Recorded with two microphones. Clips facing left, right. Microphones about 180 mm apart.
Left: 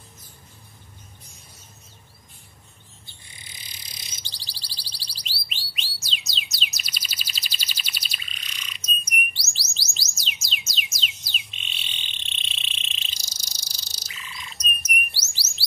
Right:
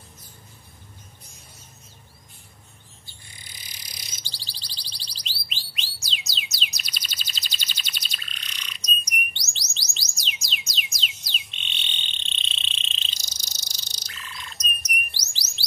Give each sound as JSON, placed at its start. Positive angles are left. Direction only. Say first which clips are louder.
{"t": 3.1, "sound": "bird", "louder": "right 1 dB", "side_deg": 20}